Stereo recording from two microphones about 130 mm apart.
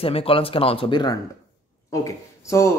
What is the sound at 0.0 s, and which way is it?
Speech, 45° left (ahead or behind).